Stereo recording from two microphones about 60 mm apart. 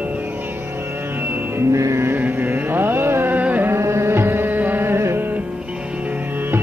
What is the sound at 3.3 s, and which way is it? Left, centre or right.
Carnatic music, right.